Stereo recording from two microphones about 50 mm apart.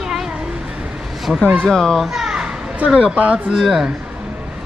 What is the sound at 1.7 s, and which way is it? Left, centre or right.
Speech, centre.